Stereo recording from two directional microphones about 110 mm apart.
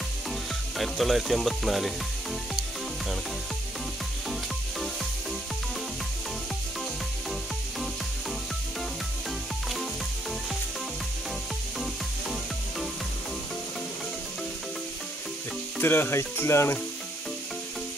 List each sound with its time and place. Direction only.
0.7 s speech: centre (ahead or behind)
11.8 s music: centre (ahead or behind)
15.8 s speech: 20° left (ahead or behind)